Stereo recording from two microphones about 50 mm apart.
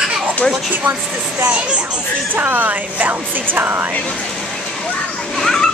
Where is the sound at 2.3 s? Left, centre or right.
Right.